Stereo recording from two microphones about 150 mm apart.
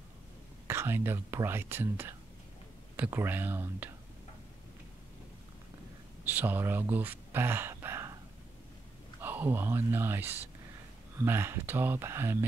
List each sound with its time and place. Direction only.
0.7 s speech: 15° right (ahead or behind)
6.2 s speech: 10° right (ahead or behind)
9.2 s speech: 15° right (ahead or behind)